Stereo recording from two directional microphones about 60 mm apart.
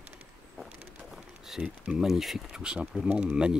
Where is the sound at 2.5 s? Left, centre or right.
Centre.